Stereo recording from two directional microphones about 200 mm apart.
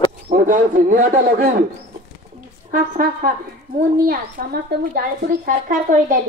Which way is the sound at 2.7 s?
45° right (ahead or behind).